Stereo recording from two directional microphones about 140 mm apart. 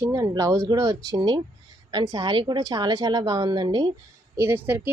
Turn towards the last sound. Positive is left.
turn(degrees=-15)  # may be behind; listen again after turning